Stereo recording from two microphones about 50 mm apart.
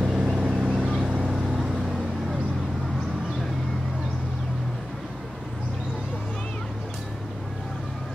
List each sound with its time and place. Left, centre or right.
0.0 s vehicle: centre
0.5 s boat: centre
1.2 s vehicle: centre